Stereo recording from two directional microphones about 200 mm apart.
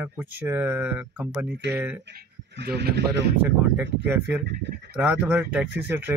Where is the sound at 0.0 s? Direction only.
10° right (ahead or behind).